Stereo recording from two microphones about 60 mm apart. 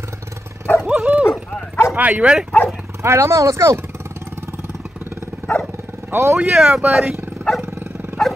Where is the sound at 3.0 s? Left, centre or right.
Right.